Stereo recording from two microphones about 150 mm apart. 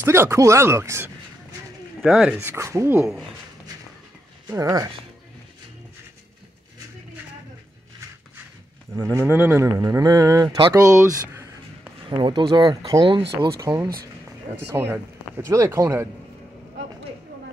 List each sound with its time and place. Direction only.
0.0 s speech: 15° right (ahead or behind)
2.0 s speech: 5° right (ahead or behind)
2.4 s speech: 20° right (ahead or behind)
3.0 s speech: centre (ahead or behind)
4.5 s speech: 20° right (ahead or behind)
8.9 s speech: 20° right (ahead or behind)
9.7 s speech: 25° right (ahead or behind)
12.2 s speech: 30° right (ahead or behind)